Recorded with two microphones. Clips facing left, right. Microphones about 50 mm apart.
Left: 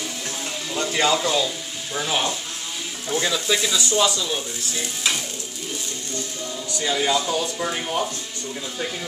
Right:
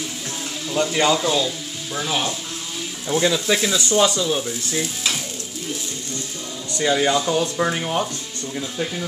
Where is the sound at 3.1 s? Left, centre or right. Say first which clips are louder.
Right 3 dB; centre.